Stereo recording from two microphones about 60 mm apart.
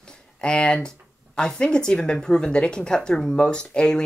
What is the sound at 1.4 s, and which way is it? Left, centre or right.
Speech, centre.